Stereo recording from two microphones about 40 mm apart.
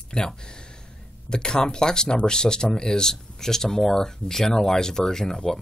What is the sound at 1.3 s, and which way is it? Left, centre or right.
Speech, centre.